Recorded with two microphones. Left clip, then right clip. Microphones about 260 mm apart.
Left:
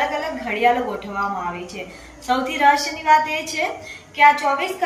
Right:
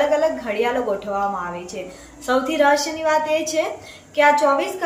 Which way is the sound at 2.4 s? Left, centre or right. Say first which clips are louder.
Left 1 dB; centre.